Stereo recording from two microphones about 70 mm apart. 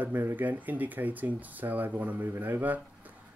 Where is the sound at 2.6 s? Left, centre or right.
Right.